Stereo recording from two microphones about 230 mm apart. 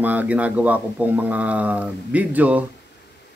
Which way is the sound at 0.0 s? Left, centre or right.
Centre.